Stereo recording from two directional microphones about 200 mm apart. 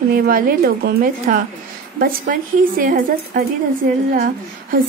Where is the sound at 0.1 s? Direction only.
45° right (ahead or behind).